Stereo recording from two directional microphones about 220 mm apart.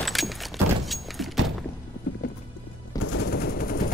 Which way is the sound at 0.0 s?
Centre (ahead or behind).